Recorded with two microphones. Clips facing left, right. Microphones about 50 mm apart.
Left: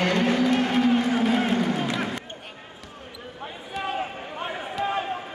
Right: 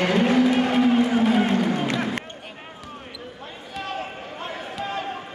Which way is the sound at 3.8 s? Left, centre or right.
Centre.